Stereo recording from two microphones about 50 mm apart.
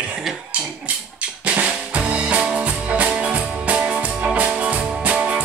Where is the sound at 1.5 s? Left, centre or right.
Right.